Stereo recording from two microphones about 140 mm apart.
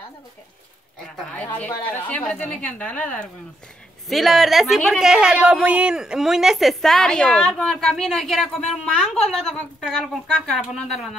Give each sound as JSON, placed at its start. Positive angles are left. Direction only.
{"t": 1.3, "sound": "a woman's voice", "side_deg": 10}
{"t": 4.1, "sound": "a woman's voice", "side_deg": 0}